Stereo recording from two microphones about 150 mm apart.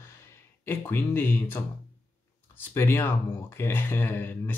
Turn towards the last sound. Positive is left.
turn(degrees=15)  # may be behind; listen again after turning